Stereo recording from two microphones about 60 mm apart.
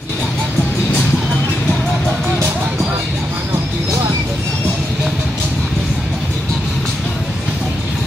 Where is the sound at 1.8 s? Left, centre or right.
Centre.